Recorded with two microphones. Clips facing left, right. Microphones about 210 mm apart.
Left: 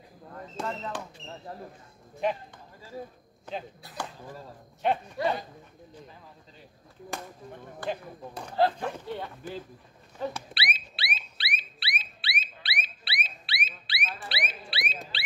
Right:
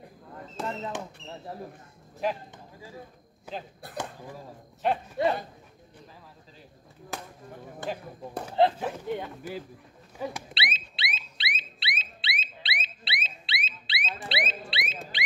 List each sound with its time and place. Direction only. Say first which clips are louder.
0.6 s a sound: even; centre (ahead or behind)
3.5 s speech: left 1 dB; 10° right (ahead or behind)
3.9 s speech: right 2 dB; 20° right (ahead or behind)
4.8 s speech: even; centre (ahead or behind)
8.6 s speech: right 2 dB; 20° right (ahead or behind)
9.0 s speech: right 3 dB; 10° right (ahead or behind)
10.5 s a sound: right 1 dB; 25° right (ahead or behind)